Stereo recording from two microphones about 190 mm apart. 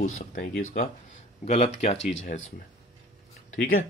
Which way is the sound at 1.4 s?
35° left (ahead or behind).